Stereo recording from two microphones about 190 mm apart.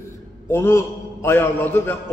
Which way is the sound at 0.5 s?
15° left (ahead or behind).